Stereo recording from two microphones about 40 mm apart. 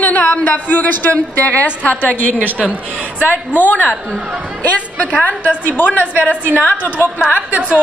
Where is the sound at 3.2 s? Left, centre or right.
Left.